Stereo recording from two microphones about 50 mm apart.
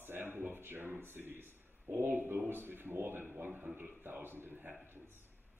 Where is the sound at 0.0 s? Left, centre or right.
Right.